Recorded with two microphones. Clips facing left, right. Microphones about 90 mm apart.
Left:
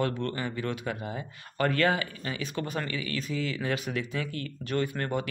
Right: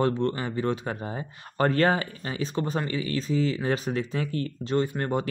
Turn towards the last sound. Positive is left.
turn(degrees=-25)  # may be behind; listen again after turning